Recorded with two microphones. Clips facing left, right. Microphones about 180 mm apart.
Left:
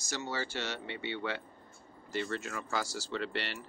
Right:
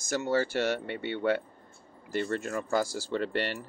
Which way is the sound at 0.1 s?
55° right (ahead or behind).